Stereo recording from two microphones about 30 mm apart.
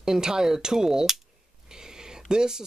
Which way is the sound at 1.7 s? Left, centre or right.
Right.